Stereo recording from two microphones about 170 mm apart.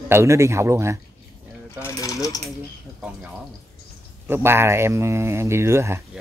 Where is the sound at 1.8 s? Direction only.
20° left (ahead or behind).